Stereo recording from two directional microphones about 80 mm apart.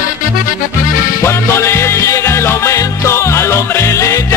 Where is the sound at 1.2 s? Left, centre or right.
Left.